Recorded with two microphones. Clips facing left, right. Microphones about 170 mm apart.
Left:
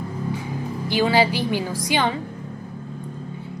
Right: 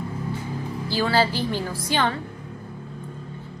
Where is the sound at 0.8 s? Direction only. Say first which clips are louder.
Left 3 dB; 20° left (ahead or behind).